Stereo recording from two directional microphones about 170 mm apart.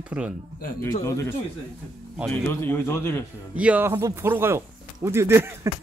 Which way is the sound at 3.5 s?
10° right (ahead or behind).